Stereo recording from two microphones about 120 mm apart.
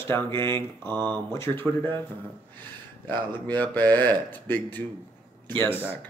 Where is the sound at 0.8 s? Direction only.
40° right (ahead or behind).